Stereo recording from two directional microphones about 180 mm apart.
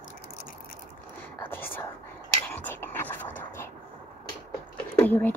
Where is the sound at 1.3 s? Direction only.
10° left (ahead or behind).